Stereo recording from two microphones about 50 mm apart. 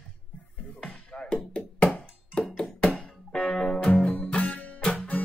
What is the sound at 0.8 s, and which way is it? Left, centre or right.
Music, centre.